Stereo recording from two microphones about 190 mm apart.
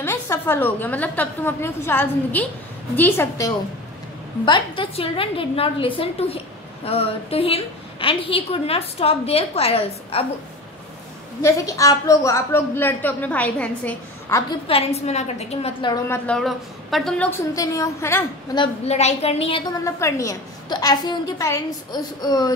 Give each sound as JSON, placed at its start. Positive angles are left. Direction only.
{"t": 0.0, "sound": "a woman's voice", "side_deg": 10}
{"t": 4.5, "sound": "a woman's voice", "side_deg": 25}
{"t": 11.4, "sound": "a woman's voice", "side_deg": 15}
{"t": 14.7, "sound": "a woman's voice", "side_deg": 35}
{"t": 16.3, "sound": "a woman's voice", "side_deg": 0}
{"t": 17.6, "sound": "a woman's voice", "side_deg": 20}
{"t": 18.6, "sound": "a woman's voice", "side_deg": 35}
{"t": 19.8, "sound": "a woman's voice", "side_deg": 15}